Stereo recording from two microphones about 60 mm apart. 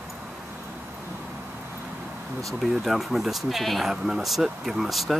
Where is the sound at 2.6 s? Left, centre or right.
Centre.